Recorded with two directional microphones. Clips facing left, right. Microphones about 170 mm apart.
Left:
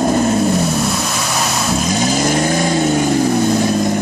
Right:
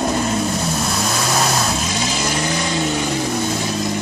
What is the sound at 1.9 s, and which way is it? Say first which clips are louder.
Vehicle: left 7 dB; 45° left (ahead or behind).